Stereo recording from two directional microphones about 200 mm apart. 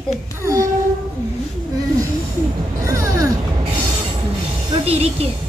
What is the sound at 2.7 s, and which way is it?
Music, 15° right (ahead or behind).